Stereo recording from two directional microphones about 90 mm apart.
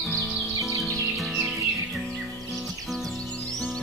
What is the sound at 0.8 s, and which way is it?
Music, centre (ahead or behind).